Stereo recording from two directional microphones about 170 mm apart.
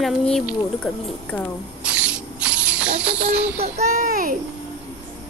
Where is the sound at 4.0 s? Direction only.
55° right (ahead or behind).